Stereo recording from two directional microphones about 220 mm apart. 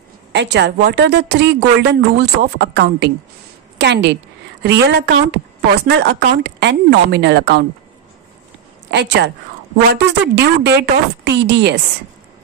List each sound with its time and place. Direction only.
0.3 s a woman's voice: 50° right (ahead or behind)
8.9 s a woman's voice: 50° right (ahead or behind)
10.3 s a woman's voice: 50° right (ahead or behind)